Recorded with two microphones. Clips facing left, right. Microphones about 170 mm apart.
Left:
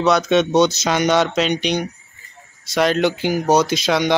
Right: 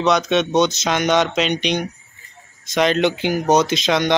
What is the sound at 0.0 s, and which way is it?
Speech, 5° left (ahead or behind).